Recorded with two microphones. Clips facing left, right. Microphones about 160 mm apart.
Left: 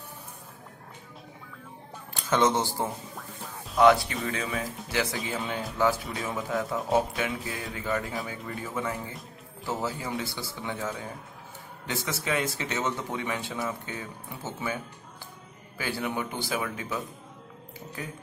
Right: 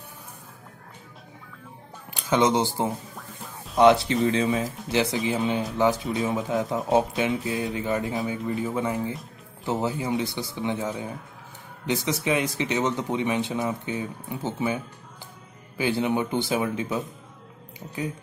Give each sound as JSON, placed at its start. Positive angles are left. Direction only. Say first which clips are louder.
{"t": 2.2, "sound": "speech", "louder": "right 3 dB", "side_deg": -15}
{"t": 15.8, "sound": "speech", "louder": "right 7 dB", "side_deg": -20}